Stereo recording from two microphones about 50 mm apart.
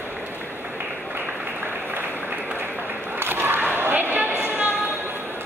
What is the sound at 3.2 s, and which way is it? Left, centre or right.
Skateboard, right.